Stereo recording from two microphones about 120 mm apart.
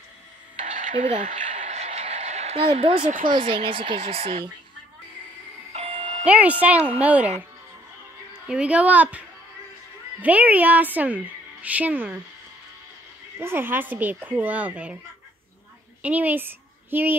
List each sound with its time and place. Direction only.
0.6 s a sound: 90° right; by 3.0 s 55° right (ahead or behind)
3.3 s speech: 45° right (ahead or behind)
5.7 s music: 55° right (ahead or behind)
6.2 s speech: 10° right (ahead or behind)
8.3 s speech: 10° right (ahead or behind)
10.2 s speech: 15° right (ahead or behind)
13.4 s speech: 20° right (ahead or behind)
16.0 s a woman's voice: 15° right (ahead or behind)